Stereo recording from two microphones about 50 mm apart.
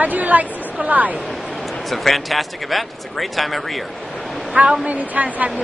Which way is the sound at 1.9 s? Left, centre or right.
Centre.